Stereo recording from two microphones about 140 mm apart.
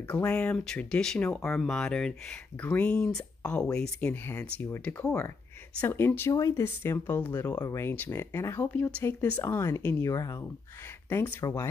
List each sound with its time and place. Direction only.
0.1 s speech: 10° left (ahead or behind)
7.5 s speech: 20° left (ahead or behind)